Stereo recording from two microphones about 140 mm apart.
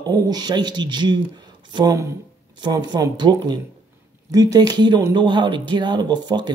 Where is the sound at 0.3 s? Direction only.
30° right (ahead or behind).